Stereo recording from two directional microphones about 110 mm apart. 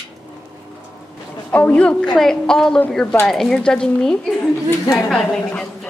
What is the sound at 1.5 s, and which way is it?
A woman's voice, 15° left (ahead or behind).